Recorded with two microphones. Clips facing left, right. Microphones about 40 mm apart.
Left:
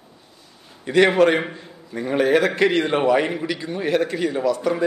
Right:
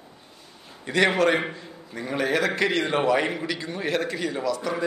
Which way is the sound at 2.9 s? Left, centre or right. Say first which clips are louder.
Left 4 dB; centre.